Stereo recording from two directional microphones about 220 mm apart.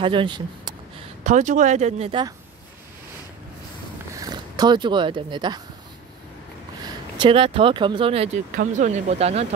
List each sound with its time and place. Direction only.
0.0 s speech: 20° right (ahead or behind)
1.2 s speech: 35° right (ahead or behind)
4.1 s speech: 15° right (ahead or behind)
6.8 s speech: 20° right (ahead or behind)